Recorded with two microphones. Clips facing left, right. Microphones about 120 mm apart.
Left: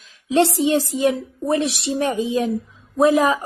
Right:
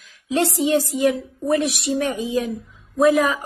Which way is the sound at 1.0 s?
25° left (ahead or behind).